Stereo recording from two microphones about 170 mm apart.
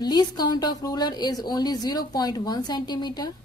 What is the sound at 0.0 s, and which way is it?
A woman's voice, 25° left (ahead or behind).